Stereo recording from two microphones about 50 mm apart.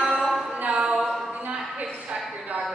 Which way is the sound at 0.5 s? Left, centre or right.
Right.